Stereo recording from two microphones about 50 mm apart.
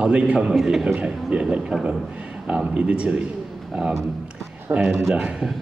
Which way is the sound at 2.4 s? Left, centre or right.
Centre.